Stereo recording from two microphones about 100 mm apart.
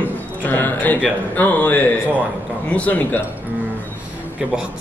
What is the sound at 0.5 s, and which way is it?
Speech, 20° left (ahead or behind).